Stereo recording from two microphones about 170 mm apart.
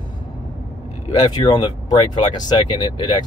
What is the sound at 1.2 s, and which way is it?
Speech, 25° left (ahead or behind).